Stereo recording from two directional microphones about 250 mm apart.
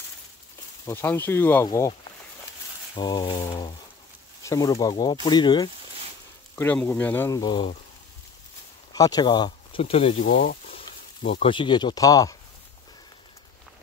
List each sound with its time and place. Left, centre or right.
0.8 s speech: centre
3.0 s speech: centre
8.9 s speech: centre
10.2 s a sound: left
10.9 s speech: left